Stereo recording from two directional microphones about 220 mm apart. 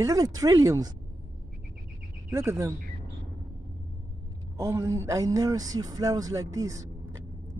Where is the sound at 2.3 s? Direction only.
15° right (ahead or behind).